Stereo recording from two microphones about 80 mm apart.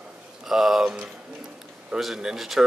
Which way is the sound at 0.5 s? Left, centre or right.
Centre.